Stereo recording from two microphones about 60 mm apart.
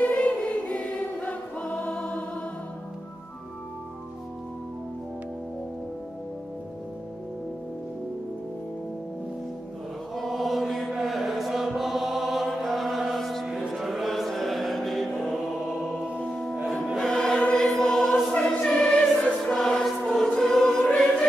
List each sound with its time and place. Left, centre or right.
0.0 s choir: left
10.1 s chant: centre
13.6 s a sound: centre
15.7 s music: centre
16.2 s music: centre
17.0 s choir: centre
18.6 s music: centre
19.0 s choir: centre